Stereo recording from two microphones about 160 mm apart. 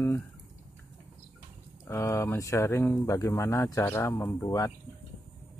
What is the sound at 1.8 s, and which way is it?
Speech, 15° left (ahead or behind).